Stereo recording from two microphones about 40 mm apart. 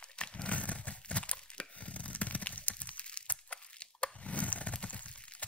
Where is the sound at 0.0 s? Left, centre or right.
Left.